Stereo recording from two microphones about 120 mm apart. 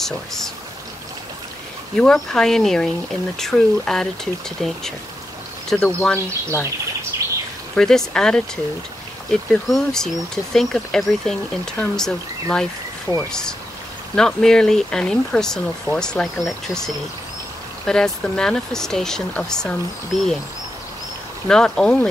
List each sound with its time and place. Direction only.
0.0 s speech: 5° left (ahead or behind)
2.0 s speech: 5° left (ahead or behind)
7.1 s bird: 25° right (ahead or behind)
7.7 s speech: 5° left (ahead or behind)
21.5 s speech: 5° left (ahead or behind)